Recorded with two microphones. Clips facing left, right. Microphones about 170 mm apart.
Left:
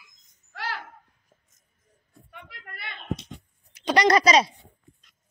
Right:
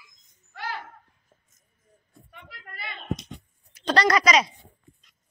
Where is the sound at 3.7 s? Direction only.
15° left (ahead or behind).